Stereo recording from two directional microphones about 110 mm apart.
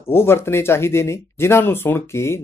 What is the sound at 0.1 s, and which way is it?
Speech, 20° left (ahead or behind).